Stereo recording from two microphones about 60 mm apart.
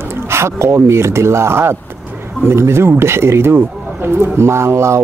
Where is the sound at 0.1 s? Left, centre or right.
Right.